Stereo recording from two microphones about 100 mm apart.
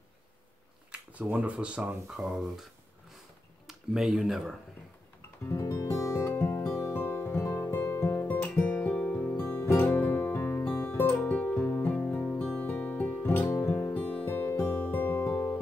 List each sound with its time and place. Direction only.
0.9 s speech: 15° right (ahead or behind)
2.1 s speech: 5° right (ahead or behind)
3.6 s speech: 5° right (ahead or behind)
5.4 s music: 30° left (ahead or behind)